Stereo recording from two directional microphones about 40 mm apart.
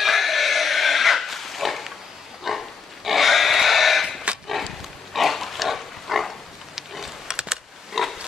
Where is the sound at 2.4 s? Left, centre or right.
Centre.